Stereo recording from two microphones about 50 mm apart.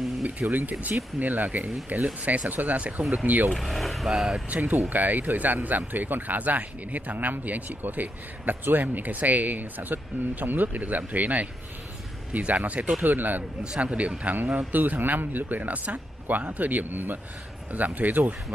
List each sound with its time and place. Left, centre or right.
0.2 s speech: right
3.5 s speech: centre
4.5 s a man's voice: right
13.0 s speech: right
13.7 s a man's voice: right